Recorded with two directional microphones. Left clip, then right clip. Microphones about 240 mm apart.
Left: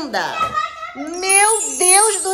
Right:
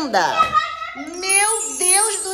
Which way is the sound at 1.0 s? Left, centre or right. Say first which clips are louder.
Left 5 dB; centre.